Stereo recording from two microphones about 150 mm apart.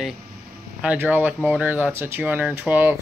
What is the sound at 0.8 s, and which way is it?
Speech, 10° right (ahead or behind).